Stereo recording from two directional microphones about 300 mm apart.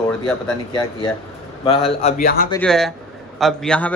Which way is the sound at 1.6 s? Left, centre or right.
Centre.